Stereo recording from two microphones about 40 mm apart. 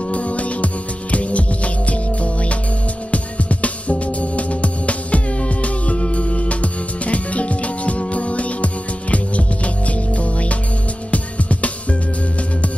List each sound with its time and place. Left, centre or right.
0.1 s music: left
10.1 s music: left